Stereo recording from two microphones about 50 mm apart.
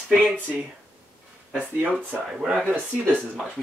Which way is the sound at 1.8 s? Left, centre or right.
Right.